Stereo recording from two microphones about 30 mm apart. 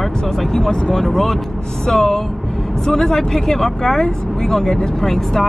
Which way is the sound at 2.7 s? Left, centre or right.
Centre.